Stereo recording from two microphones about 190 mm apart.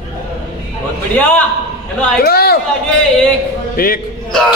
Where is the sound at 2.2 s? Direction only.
55° left (ahead or behind).